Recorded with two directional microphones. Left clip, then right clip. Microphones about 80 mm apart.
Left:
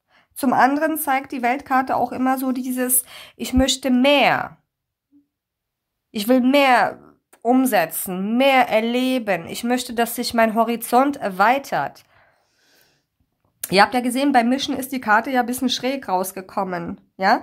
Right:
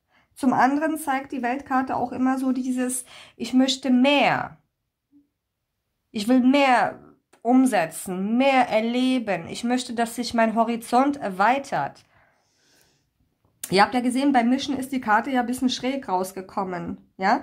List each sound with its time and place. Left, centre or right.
0.1 s a woman's voice: left
6.1 s speech: left
7.1 s a sound: left
8.0 s speech: left